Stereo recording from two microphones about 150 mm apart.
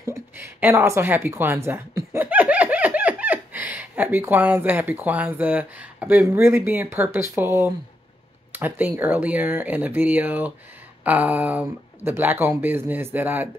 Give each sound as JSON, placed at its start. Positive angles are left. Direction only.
{"t": 0.1, "sound": "a woman's voice", "side_deg": -15}